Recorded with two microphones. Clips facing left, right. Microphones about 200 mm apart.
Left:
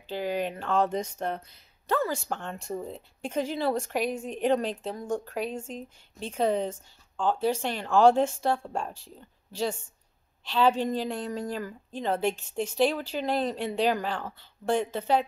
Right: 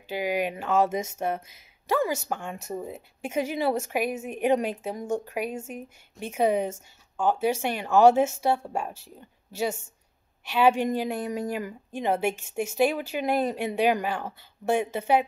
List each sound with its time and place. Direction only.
0.1 s speech: 10° right (ahead or behind)
10.4 s speech: 10° right (ahead or behind)